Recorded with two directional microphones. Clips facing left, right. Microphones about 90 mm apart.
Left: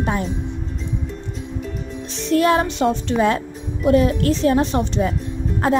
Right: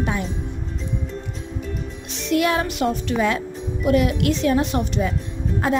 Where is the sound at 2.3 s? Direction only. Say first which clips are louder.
Left 3 dB; 35° left (ahead or behind).